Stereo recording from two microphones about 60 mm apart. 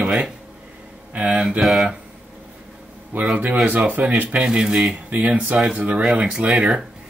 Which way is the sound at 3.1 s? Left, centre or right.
Right.